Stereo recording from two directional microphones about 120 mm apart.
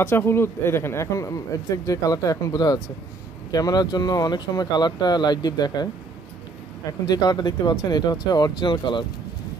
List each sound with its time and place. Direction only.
0.0 s a man's voice: 20° left (ahead or behind); by 5.9 s 35° left (ahead or behind)
6.9 s speech: 35° left (ahead or behind)